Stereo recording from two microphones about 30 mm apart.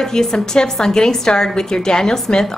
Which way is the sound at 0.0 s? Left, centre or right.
Centre.